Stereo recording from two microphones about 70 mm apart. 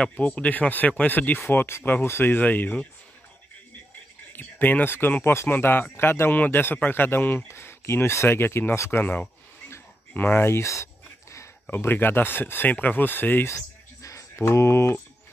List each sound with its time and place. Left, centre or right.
0.1 s speech: left
4.3 s speech: left
7.4 s speech: left
9.0 s speech: left
11.7 s speech: left
14.0 s a sound: left